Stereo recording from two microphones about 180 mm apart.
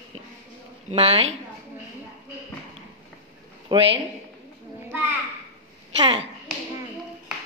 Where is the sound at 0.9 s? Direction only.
35° right (ahead or behind).